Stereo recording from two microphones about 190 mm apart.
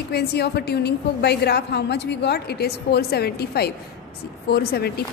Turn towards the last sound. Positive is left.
turn(degrees=55)  # may be behind; listen again after turning